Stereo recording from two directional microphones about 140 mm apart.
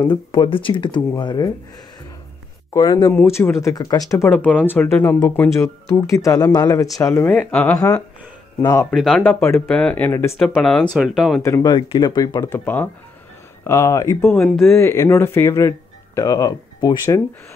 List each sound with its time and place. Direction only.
0.0 s speech: 30° left (ahead or behind)
2.7 s speech: 30° left (ahead or behind)
3.3 s speech: 20° left (ahead or behind)
4.3 s speech: 10° left (ahead or behind)
7.7 s speech: 25° left (ahead or behind)
8.9 s speech: centre (ahead or behind)
9.2 s speech: 15° left (ahead or behind)
10.3 s speech: centre (ahead or behind)
11.4 s speech: 20° left (ahead or behind)
11.7 s speech: 35° left (ahead or behind)
12.4 s speech: 15° left (ahead or behind)
14.2 s speech: 5° left (ahead or behind)
14.7 s speech: 20° left (ahead or behind)
16.2 s speech: 30° left (ahead or behind)